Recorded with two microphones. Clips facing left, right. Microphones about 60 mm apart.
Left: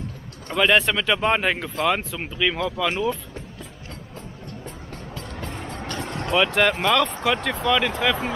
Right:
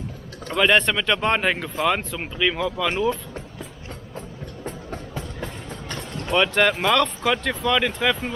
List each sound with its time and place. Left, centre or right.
0.5 s speech: centre
5.6 s vehicle: left
6.2 s speech: centre